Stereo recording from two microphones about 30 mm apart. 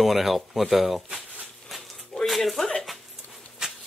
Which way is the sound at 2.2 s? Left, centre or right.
Centre.